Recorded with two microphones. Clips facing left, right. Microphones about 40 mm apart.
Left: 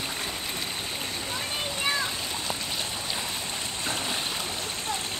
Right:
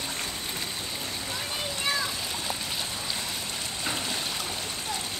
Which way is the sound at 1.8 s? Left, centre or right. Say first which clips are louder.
Left 1 dB; centre.